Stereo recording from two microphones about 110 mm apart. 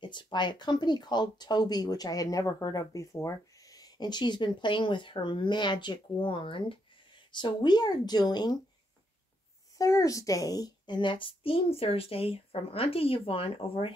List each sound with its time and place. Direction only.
0.0 s speech: 45° left (ahead or behind)
9.8 s a child's voice: 30° left (ahead or behind); by 13.9 s 55° left (ahead or behind)